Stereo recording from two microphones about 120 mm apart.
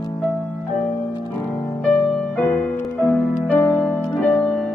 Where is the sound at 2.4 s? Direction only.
15° left (ahead or behind).